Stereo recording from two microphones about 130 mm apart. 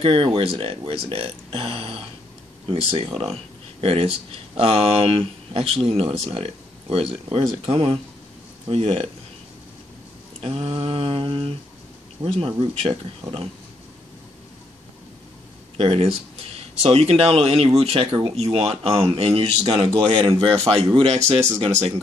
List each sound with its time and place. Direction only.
0.0 s speech: 45° right (ahead or behind)
10.4 s speech: 45° right (ahead or behind)
15.8 s speech: 45° right (ahead or behind)
20.1 s speech: 40° right (ahead or behind)